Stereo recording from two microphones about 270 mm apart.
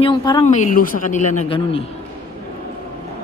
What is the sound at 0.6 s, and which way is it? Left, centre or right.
Speech, left.